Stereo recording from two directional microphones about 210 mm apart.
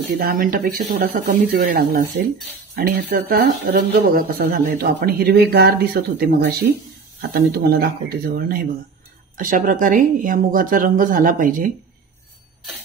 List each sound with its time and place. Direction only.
0.1 s speech: 45° right (ahead or behind)